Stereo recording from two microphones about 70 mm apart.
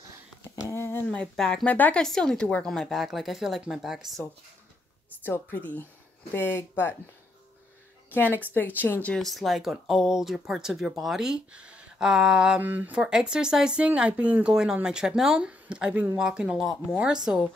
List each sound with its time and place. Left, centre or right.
0.6 s speech: left
1.3 s a woman's voice: centre
1.7 s speech: left
2.0 s a woman's voice: centre
5.2 s speech: left
8.1 s speech: left
9.2 s speech: centre
11.5 s speech: centre
12.5 s speech: right
12.9 s speech: centre